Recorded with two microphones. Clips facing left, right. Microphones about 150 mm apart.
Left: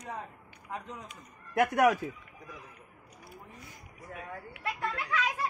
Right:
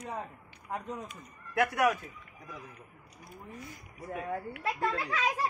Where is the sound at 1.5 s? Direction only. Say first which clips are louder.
Left 2 dB; 45° left (ahead or behind).